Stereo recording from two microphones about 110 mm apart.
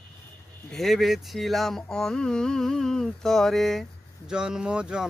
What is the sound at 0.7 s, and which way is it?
Speech, centre (ahead or behind).